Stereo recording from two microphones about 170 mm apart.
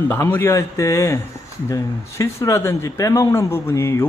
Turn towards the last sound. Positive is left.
turn(degrees=15)  # may be behind; listen again after turning